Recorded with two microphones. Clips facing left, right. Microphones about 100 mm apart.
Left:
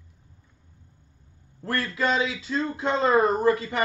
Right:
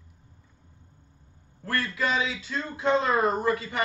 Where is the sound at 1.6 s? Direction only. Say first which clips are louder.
Left 2 dB; 30° left (ahead or behind).